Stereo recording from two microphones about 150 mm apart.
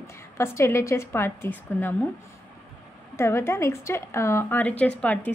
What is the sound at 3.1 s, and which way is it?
A woman's voice, 15° left (ahead or behind).